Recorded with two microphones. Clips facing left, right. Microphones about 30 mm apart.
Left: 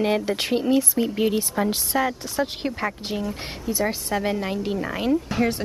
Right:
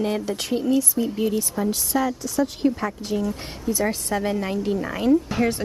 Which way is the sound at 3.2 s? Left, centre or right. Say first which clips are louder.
Right 2 dB; left.